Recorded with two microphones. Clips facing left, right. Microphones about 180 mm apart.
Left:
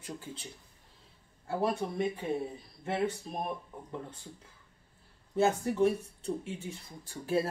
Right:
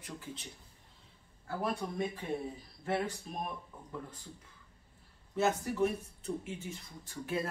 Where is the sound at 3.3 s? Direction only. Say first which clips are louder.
Left 4 dB; 30° left (ahead or behind).